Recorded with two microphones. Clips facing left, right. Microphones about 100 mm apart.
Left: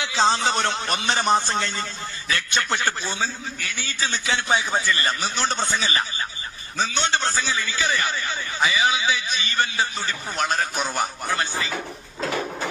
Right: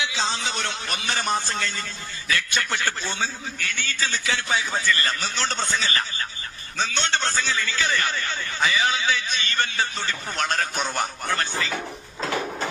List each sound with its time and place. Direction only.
0.0 s a man's voice: 40° left (ahead or behind)
3.0 s a man's voice: 5° left (ahead or behind)